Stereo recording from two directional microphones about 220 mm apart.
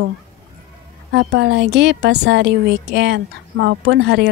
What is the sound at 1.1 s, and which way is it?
A woman's voice, 50° right (ahead or behind).